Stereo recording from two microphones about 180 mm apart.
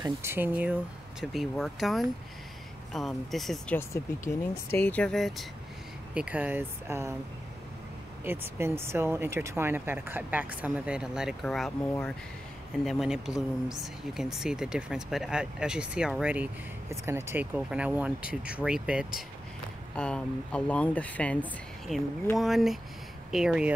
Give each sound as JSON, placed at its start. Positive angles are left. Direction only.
{"t": 0.0, "sound": "speech", "side_deg": -15}
{"t": 3.7, "sound": "speech", "side_deg": 15}
{"t": 8.2, "sound": "speech", "side_deg": -15}
{"t": 12.8, "sound": "speech", "side_deg": 0}
{"t": 20.0, "sound": "speech", "side_deg": 5}